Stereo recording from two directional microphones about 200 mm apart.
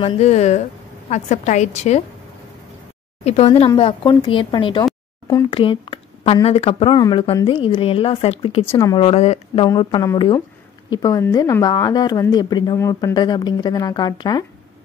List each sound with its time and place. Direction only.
0.0 s a woman's voice: 30° left (ahead or behind)
3.3 s speech: 30° left (ahead or behind)